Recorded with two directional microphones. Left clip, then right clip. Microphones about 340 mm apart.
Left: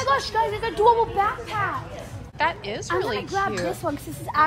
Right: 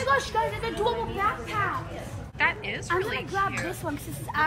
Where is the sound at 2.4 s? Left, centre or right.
Centre.